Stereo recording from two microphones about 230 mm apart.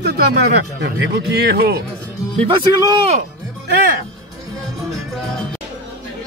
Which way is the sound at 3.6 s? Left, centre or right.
Right.